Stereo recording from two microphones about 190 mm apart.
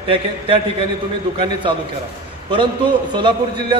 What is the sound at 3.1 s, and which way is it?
Speech, 25° right (ahead or behind).